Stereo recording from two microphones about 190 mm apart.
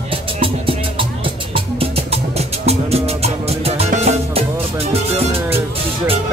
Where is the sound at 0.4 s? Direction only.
30° right (ahead or behind).